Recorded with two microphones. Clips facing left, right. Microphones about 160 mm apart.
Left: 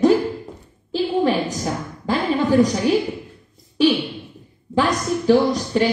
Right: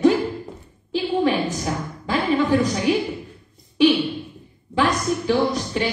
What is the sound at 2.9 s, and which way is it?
Speech, 40° left (ahead or behind).